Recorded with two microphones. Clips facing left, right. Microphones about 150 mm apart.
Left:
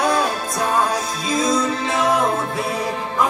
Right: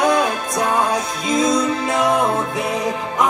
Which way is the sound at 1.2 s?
20° right (ahead or behind).